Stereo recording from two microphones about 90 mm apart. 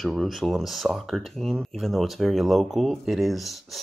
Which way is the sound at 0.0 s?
Centre (ahead or behind).